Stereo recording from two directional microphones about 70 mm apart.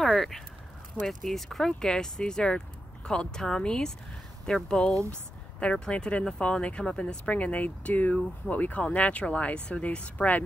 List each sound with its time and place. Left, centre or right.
0.0 s speech: centre; by 10.4 s left